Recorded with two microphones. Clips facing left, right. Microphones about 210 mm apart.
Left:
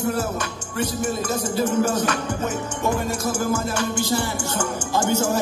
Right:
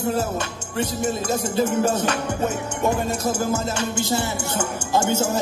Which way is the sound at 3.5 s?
25° right (ahead or behind).